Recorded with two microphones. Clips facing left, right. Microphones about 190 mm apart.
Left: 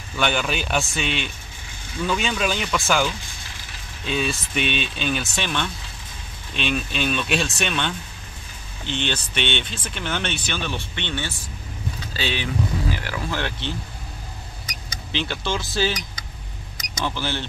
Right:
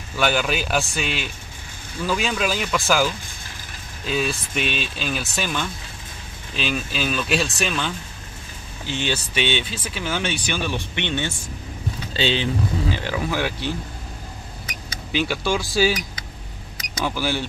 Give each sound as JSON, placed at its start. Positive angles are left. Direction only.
{"t": 0.1, "sound": "speech", "side_deg": -5}
{"t": 13.4, "sound": "speech", "side_deg": -10}
{"t": 15.1, "sound": "speech", "side_deg": -10}